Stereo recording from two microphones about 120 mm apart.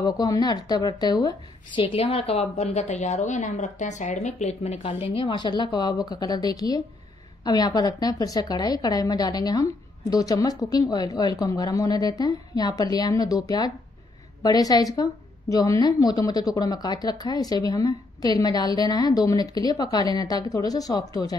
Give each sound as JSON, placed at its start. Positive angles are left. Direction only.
{"t": 0.0, "sound": "a woman's voice", "side_deg": 35}
{"t": 1.8, "sound": "a woman's voice", "side_deg": 50}